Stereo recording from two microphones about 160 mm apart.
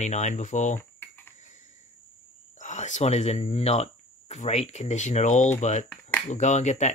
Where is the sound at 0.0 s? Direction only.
50° left (ahead or behind).